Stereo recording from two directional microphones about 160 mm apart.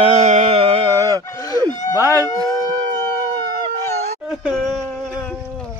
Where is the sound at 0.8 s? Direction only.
20° right (ahead or behind).